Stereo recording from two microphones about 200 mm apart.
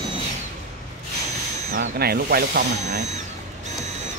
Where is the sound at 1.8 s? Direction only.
50° right (ahead or behind).